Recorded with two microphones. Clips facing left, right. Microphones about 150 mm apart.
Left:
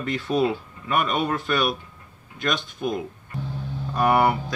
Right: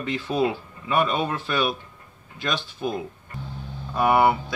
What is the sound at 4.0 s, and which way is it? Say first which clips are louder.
Speech: right 1 dB; 5° right (ahead or behind).